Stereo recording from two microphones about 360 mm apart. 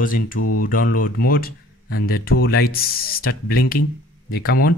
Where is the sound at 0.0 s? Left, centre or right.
Left.